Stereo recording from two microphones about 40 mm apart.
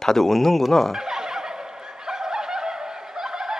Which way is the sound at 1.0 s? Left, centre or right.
Centre.